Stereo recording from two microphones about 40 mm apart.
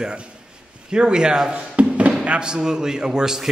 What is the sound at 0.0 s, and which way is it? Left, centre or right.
A man's voice, right.